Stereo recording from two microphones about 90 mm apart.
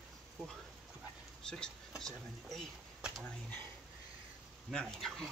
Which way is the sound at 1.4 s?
10° left (ahead or behind).